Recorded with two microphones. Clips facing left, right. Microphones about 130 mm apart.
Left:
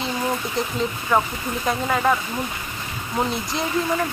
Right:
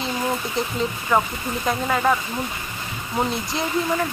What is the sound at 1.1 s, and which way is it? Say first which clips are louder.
Speech: even; 5° left (ahead or behind).